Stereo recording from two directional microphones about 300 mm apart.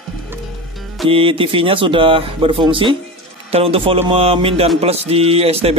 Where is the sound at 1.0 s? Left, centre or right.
Centre.